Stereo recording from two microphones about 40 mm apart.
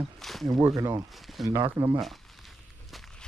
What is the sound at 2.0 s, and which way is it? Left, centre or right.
Walk, centre.